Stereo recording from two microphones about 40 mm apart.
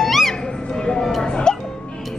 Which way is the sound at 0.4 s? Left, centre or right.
Left.